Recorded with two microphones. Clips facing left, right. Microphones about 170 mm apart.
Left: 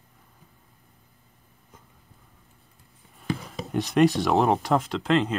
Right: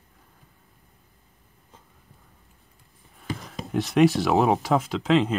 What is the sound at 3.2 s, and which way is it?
Speech, 5° left (ahead or behind).